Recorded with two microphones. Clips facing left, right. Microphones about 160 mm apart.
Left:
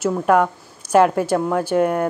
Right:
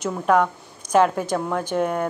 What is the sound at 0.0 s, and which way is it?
Speech, 5° left (ahead or behind).